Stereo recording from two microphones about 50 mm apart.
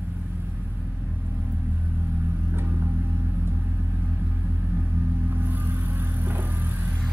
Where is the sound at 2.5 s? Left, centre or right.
Right.